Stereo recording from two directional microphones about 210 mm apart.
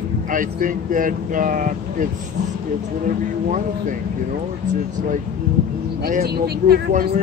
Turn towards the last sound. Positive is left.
turn(degrees=-45)  # may be behind; listen again after turning